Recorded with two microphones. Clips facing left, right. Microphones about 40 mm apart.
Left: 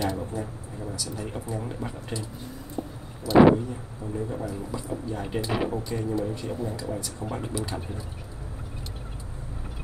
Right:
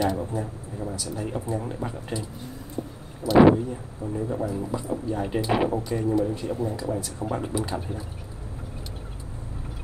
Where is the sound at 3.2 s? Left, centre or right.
Centre.